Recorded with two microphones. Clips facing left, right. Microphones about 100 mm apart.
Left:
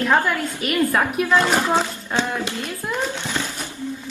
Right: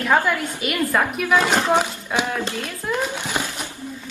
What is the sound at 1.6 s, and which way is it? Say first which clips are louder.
Speech: right 1 dB; 15° right (ahead or behind).